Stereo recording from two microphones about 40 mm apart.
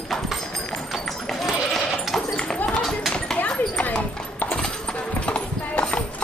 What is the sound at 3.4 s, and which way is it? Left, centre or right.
Clip-clop, left.